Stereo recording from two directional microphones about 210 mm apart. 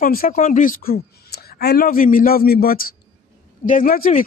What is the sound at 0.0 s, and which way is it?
A woman's voice, 45° left (ahead or behind).